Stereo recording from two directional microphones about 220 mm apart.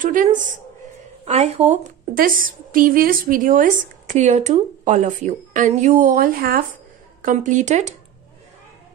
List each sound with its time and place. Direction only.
0.0 s a woman's voice: 35° right (ahead or behind)
2.1 s a woman's voice: 40° right (ahead or behind)